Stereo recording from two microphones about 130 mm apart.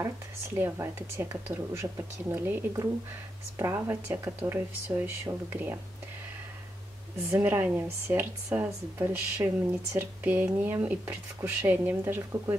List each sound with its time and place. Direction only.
0.6 s speech: 20° right (ahead or behind)
7.2 s speech: 15° right (ahead or behind)